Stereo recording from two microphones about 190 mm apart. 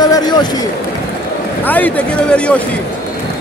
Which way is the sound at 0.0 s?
20° left (ahead or behind).